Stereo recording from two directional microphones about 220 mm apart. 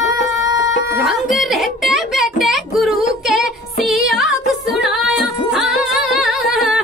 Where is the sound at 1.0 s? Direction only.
Centre (ahead or behind).